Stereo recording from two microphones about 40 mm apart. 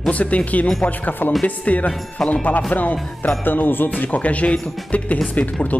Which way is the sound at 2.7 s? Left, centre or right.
Left.